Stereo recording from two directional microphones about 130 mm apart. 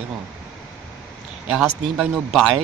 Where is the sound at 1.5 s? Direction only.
5° right (ahead or behind).